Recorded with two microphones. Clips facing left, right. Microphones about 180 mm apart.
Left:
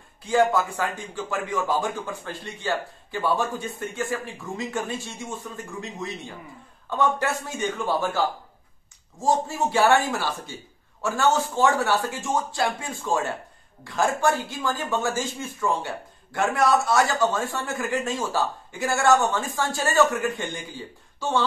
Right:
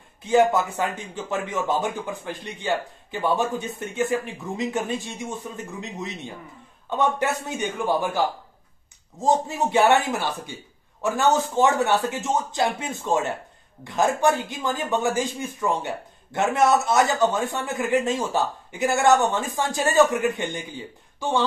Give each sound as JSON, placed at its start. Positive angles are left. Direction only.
{"t": 0.2, "sound": "a man's voice", "side_deg": -20}